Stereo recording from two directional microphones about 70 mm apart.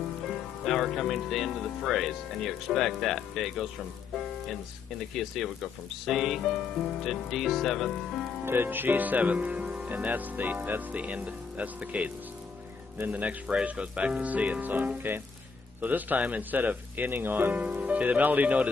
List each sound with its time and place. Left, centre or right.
0.3 s speech: centre
5.1 s speech: centre
8.5 s speech: right